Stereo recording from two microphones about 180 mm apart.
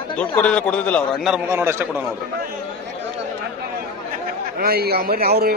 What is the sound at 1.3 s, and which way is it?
Speech, 10° right (ahead or behind).